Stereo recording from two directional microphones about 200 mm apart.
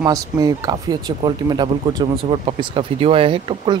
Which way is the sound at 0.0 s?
20° right (ahead or behind).